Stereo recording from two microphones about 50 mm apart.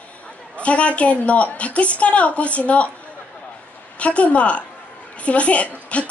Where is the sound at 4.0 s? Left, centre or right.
Left.